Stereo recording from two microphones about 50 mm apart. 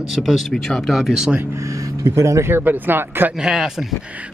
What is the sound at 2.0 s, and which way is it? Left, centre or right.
Speech, right.